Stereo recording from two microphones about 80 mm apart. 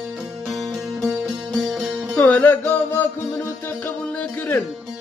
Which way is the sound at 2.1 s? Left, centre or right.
Centre.